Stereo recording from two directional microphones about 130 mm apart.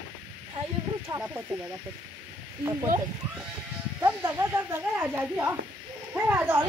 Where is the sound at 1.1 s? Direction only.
15° right (ahead or behind).